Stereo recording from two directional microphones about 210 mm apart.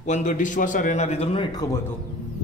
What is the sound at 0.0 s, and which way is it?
A man's voice, 35° left (ahead or behind).